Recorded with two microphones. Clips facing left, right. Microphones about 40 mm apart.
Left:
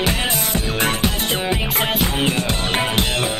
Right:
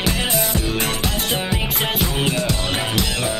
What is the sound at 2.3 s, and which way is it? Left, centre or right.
Music, left.